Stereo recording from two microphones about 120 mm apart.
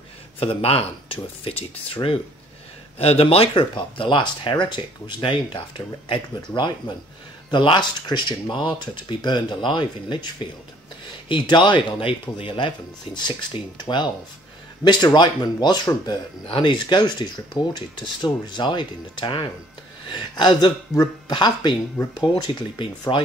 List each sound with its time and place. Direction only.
0.4 s speech: 55° left (ahead or behind)